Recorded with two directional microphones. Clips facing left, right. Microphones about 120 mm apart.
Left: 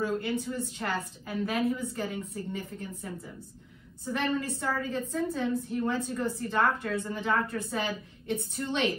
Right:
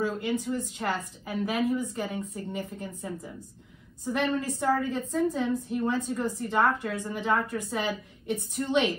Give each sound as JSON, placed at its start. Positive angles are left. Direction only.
{"t": 0.2, "sound": "a woman's voice", "side_deg": -15}
{"t": 4.1, "sound": "a woman's voice", "side_deg": -20}